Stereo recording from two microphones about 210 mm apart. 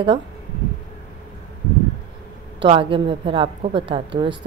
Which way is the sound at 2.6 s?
25° right (ahead or behind).